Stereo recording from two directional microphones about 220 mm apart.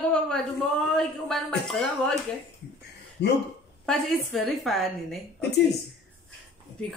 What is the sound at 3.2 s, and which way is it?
Speech, 50° left (ahead or behind).